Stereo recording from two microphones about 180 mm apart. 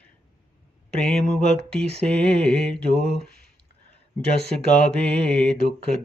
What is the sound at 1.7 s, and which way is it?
Mantra, 5° left (ahead or behind).